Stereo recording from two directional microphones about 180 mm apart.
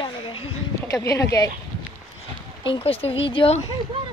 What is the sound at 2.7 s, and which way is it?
Speech, 30° left (ahead or behind).